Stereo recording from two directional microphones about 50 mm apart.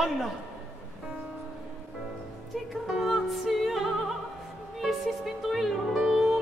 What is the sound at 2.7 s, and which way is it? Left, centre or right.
Music, centre.